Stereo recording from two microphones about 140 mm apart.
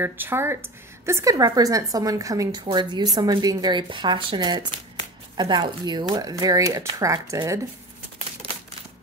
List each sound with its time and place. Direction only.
0.0 s speech: 15° right (ahead or behind)